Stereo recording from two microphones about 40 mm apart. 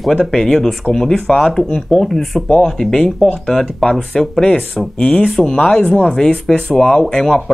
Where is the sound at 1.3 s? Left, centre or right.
Left.